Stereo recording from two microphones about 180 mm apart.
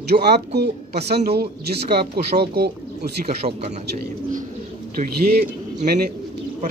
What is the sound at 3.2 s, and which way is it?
Speech, 35° right (ahead or behind).